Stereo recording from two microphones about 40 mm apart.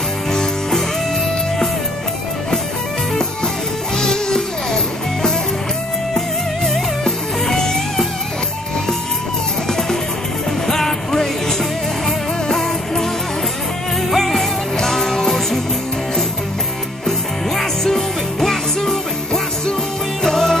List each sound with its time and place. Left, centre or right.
0.3 s music: centre
4.0 s music: centre
6.1 s music: centre
9.7 s music: centre
14.1 s music: centre
17.6 s music: centre